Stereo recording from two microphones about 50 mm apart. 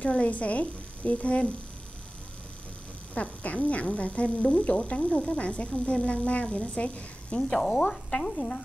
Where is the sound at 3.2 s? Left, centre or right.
Left.